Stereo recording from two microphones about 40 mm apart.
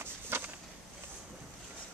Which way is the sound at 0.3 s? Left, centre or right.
Right.